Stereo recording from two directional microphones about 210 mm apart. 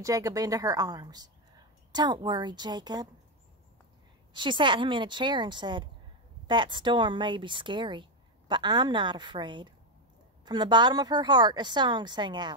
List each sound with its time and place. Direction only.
0.0 s a woman's voice: 15° right (ahead or behind)
4.3 s speech: 25° right (ahead or behind)